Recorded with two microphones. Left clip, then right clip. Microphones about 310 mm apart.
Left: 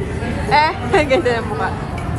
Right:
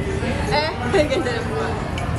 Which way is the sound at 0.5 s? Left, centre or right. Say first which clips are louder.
Left 6 dB; centre.